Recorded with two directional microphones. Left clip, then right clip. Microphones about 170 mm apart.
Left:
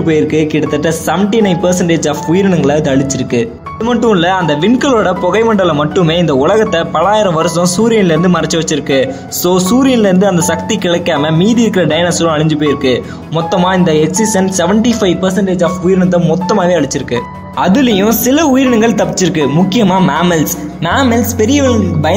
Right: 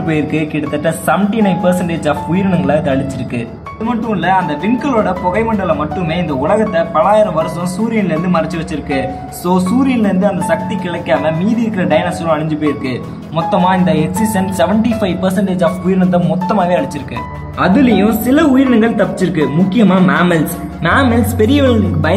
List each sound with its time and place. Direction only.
0.0 s speech: 20° left (ahead or behind)
3.8 s speech: 45° left (ahead or behind)
9.5 s speech: 45° left (ahead or behind)
13.6 s speech: 35° left (ahead or behind)
17.6 s speech: 45° left (ahead or behind)
21.1 s a woman's voice: 15° left (ahead or behind)